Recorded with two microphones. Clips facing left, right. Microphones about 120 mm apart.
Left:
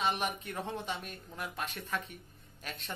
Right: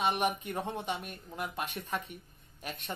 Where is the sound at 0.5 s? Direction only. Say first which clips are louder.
Right 3 dB; 10° right (ahead or behind).